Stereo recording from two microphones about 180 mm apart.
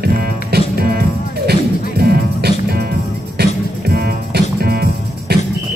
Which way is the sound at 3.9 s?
60° right (ahead or behind).